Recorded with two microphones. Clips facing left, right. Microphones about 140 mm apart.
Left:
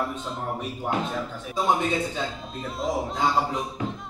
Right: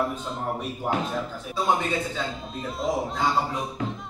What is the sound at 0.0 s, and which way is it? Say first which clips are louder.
Speech: right 2 dB; centre (ahead or behind).